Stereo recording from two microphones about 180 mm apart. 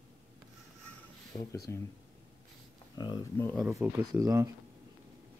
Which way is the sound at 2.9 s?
25° left (ahead or behind).